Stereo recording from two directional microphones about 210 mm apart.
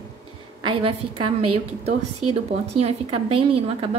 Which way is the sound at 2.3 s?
30° right (ahead or behind).